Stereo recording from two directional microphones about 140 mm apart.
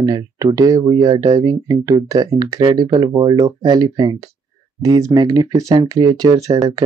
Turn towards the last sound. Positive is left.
turn(degrees=-25)  # may be behind; listen again after turning